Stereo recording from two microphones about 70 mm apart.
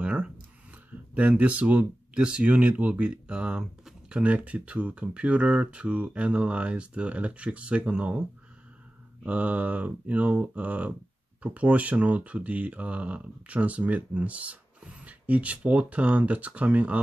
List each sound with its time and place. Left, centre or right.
0.0 s a sound: centre
1.1 s speech: right
9.2 s speech: centre